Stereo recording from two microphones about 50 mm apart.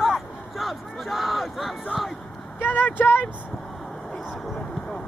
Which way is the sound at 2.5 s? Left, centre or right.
Left.